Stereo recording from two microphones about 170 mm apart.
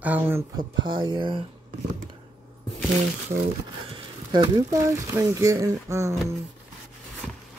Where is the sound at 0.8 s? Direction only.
25° right (ahead or behind).